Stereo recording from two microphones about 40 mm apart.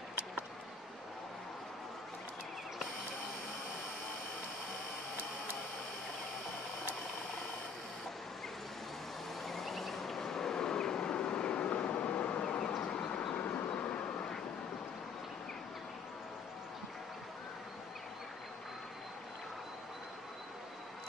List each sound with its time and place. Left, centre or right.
9.4 s vehicle: centre; by 13.1 s left
13.3 s train: left